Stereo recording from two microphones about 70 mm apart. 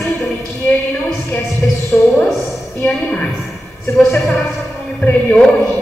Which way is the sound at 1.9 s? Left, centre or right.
Left.